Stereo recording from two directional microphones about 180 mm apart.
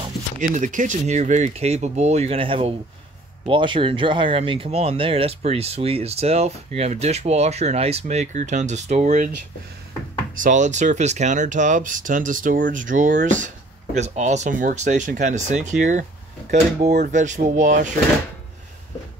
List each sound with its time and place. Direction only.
0.4 s speech: 45° right (ahead or behind)
10.3 s speech: 45° right (ahead or behind)